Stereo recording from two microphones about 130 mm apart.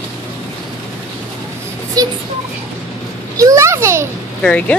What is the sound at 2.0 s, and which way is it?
Speech, 30° right (ahead or behind).